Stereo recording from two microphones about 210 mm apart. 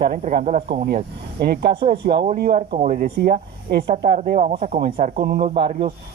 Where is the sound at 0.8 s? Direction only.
45° right (ahead or behind).